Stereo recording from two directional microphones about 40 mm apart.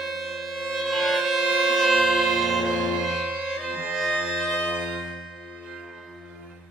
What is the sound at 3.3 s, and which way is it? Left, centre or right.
Music, right.